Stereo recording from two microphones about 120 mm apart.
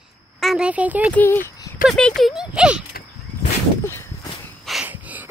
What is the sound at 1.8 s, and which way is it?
Speech, 5° left (ahead or behind).